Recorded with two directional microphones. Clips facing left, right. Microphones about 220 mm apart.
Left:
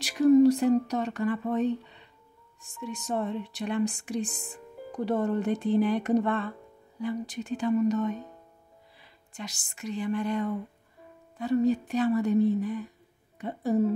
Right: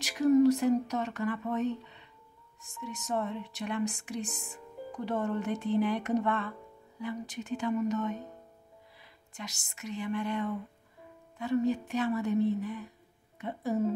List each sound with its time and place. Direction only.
0.0 s speech: 30° left (ahead or behind)
9.3 s speech: 30° left (ahead or behind)